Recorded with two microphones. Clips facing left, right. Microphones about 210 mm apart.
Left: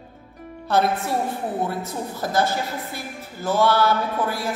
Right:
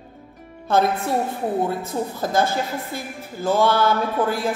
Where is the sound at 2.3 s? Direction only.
50° right (ahead or behind).